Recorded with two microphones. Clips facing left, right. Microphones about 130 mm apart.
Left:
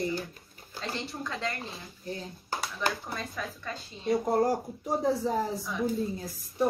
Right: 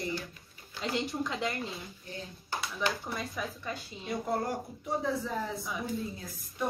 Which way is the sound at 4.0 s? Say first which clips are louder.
Left 7 dB; 40° left (ahead or behind).